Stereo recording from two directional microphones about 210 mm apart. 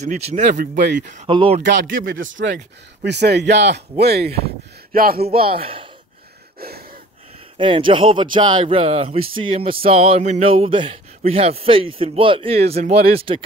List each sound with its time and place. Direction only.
0.0 s speech: 35° right (ahead or behind)
1.3 s a sound: 25° right (ahead or behind)
1.6 s speech: 60° right (ahead or behind)
1.9 s speech: 40° right (ahead or behind)
2.1 s speech: 65° right (ahead or behind)
3.0 s speech: 50° right (ahead or behind)
5.2 s a sound: 25° right (ahead or behind)
6.6 s gasp: 45° right (ahead or behind)
7.5 s a sound: 25° right (ahead or behind)